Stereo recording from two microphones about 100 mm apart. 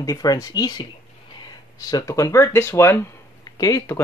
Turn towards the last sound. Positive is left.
turn(degrees=35)  # may be behind; listen again after turning